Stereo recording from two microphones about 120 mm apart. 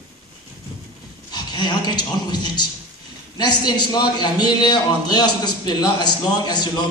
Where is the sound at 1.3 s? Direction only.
35° left (ahead or behind).